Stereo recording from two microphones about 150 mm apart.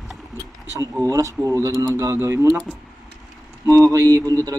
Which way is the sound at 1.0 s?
20° right (ahead or behind).